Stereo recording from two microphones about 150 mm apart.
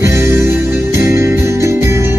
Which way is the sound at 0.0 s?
20° right (ahead or behind).